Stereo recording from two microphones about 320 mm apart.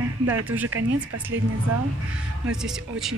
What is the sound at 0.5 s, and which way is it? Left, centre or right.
Speech, centre.